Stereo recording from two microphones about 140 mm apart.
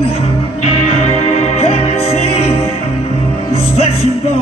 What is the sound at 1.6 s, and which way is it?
Music, 50° left (ahead or behind).